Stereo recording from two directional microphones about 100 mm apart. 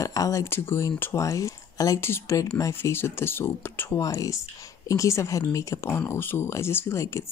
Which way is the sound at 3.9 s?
35° left (ahead or behind).